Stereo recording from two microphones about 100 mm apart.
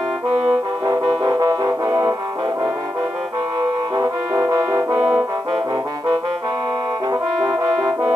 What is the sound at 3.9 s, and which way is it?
Brass instrument, 40° right (ahead or behind).